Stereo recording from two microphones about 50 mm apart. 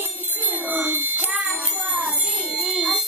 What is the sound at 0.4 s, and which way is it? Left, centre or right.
Wind chime, right.